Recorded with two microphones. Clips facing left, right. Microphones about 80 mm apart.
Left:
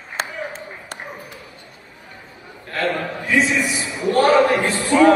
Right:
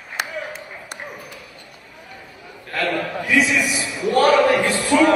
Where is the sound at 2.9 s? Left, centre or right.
Left.